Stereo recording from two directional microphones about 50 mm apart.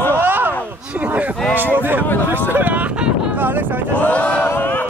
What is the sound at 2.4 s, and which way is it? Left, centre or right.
Vehicle, right.